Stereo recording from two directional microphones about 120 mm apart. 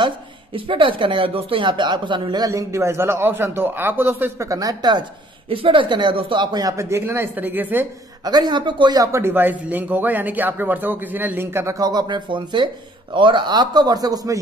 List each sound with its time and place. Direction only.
0.0 s speech: 45° right (ahead or behind)
5.5 s speech: 45° right (ahead or behind); by 7.8 s 15° right (ahead or behind)
8.2 s a man's voice: 35° right (ahead or behind)
11.8 s speech: 35° right (ahead or behind)